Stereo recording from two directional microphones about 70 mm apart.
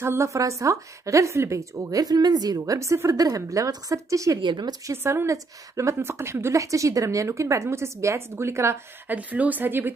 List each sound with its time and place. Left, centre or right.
0.0 s a woman's voice: right
4.5 s speech: right
4.9 s a woman's voice: right
9.0 s speech: right